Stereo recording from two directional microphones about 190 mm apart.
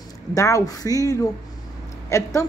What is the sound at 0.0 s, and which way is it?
Speech, 20° left (ahead or behind).